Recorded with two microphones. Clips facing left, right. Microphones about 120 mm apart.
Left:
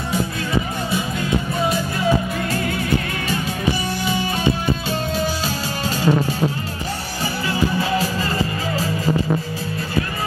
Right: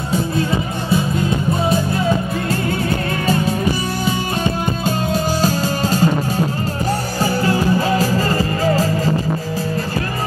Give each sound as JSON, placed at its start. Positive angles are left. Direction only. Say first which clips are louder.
{"t": 4.8, "sound": "music", "louder": "right 3 dB", "side_deg": -45}
{"t": 8.0, "sound": "music", "louder": "right 5 dB", "side_deg": -40}